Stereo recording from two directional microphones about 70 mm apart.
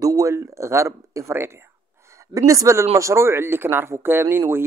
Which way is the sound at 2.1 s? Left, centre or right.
Right.